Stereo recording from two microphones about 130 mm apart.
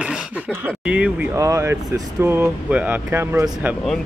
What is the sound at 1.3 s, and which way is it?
Speech, 25° right (ahead or behind).